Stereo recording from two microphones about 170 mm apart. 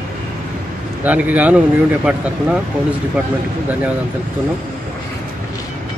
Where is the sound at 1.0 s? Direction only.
10° right (ahead or behind).